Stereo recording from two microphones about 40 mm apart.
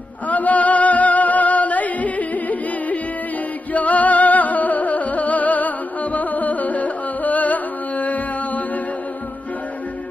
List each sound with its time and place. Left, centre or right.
0.3 s music: left